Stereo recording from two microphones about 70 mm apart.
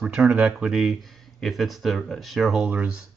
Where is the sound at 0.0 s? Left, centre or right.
Centre.